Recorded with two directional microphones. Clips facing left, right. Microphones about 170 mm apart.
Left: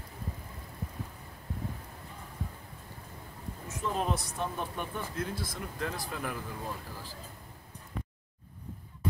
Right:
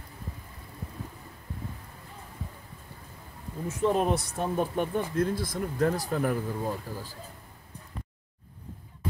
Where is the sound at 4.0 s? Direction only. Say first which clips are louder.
Right 5 dB; 50° right (ahead or behind).